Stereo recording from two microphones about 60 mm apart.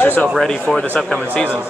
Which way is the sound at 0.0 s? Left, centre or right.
Left.